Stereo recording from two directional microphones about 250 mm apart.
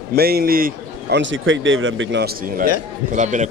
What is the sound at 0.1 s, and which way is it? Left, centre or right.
A man's voice, right.